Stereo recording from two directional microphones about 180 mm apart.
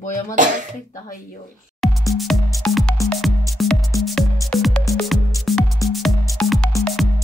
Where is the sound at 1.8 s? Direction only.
Centre (ahead or behind).